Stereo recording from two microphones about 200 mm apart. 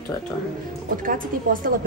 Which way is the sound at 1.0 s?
45° right (ahead or behind).